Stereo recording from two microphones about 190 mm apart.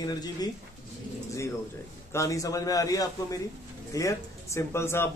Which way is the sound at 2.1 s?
15° left (ahead or behind).